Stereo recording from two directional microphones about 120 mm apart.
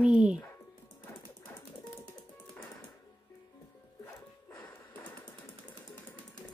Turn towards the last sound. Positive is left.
turn(degrees=15)  # may be behind; listen again after turning